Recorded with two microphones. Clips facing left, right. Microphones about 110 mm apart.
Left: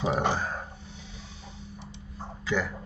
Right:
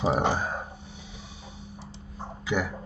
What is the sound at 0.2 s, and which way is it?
Speech, 15° right (ahead or behind).